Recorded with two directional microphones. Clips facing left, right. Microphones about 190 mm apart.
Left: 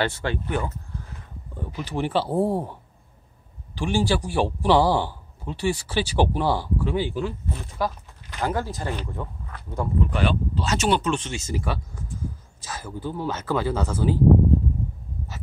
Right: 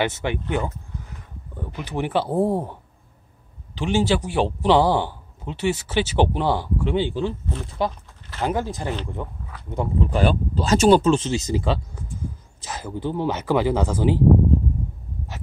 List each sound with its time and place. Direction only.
0.0 s a man's voice: 20° right (ahead or behind)
10.0 s a man's voice: 40° right (ahead or behind); by 14.1 s 15° right (ahead or behind)